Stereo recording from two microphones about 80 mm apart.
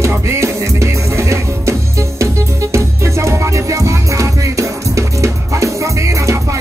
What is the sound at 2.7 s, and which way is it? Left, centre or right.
Music, right.